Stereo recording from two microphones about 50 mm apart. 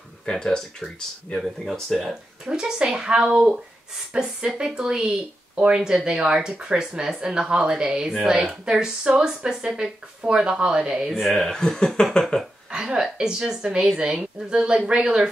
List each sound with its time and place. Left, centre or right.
0.2 s speech: centre
2.4 s a woman's voice: centre
11.2 s speech: centre
12.7 s a woman's voice: centre